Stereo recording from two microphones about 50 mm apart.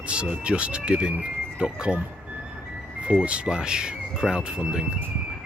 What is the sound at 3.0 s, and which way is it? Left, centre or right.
Speech, right.